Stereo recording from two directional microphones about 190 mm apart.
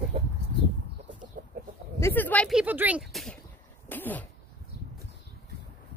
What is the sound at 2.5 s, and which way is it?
Speech, 10° right (ahead or behind).